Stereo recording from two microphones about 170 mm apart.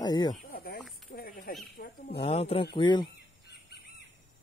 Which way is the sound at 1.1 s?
55° left (ahead or behind).